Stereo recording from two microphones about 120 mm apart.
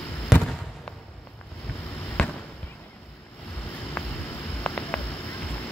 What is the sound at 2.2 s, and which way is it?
Basketball bounce, 10° left (ahead or behind).